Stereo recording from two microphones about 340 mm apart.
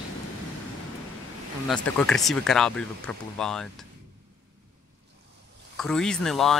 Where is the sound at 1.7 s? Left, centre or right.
Centre.